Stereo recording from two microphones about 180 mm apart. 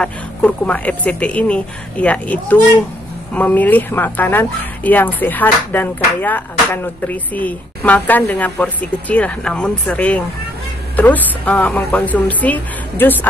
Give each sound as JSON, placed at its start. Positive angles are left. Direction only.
{"t": 0.0, "sound": "speech", "side_deg": 5}